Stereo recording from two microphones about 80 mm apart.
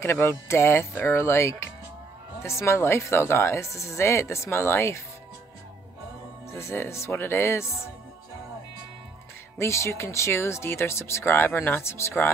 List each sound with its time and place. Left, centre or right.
0.0 s speech: left
6.6 s speech: left
9.6 s speech: left